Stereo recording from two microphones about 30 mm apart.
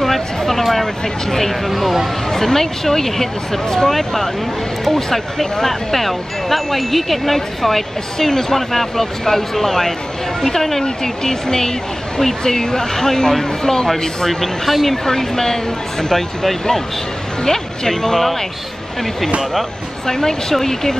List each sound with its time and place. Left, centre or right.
0.4 s speech: centre
1.7 s speech: centre
2.3 s speech: centre
14.4 s speech: centre
15.0 s speech: centre
17.4 s speech: centre
20.1 s speech: centre